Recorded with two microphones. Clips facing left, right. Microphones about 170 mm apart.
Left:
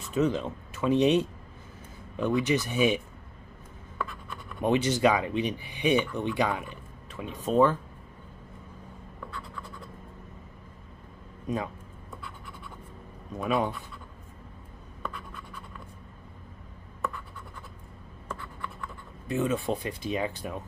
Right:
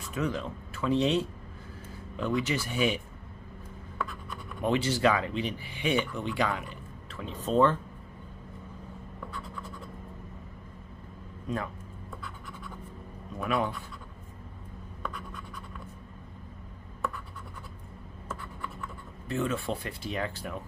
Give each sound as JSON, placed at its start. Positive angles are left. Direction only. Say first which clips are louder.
{"t": 0.0, "sound": "speech", "louder": "left 5 dB", "side_deg": 25}
{"t": 4.0, "sound": "scratch", "louder": "left 1 dB", "side_deg": -5}
{"t": 4.6, "sound": "speech", "louder": "left 3 dB", "side_deg": 20}
{"t": 11.4, "sound": "a sound", "louder": "left 2 dB", "side_deg": 20}
{"t": 13.4, "sound": "speech", "louder": "left 2 dB", "side_deg": 20}
{"t": 15.0, "sound": "scratch", "louder": "even", "side_deg": 0}
{"t": 19.2, "sound": "speech", "louder": "left 3 dB", "side_deg": 15}